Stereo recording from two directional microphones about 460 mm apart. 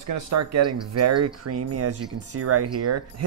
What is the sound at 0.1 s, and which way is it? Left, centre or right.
Speech, right.